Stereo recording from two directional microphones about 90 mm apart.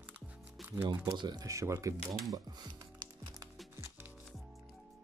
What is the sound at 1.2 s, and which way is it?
Speech, 55° right (ahead or behind).